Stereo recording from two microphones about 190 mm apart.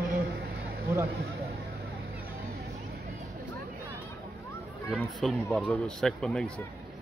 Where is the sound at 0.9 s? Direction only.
10° right (ahead or behind).